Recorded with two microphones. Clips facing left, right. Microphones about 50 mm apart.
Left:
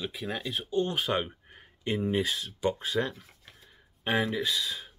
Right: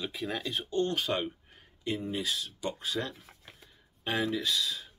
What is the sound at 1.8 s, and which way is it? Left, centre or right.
Speech, left.